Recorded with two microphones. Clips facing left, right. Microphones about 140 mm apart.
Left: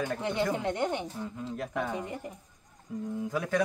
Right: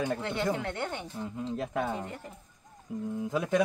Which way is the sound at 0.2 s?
20° left (ahead or behind).